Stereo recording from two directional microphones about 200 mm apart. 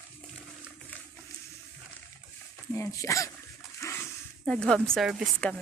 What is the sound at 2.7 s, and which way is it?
Speech, 15° left (ahead or behind).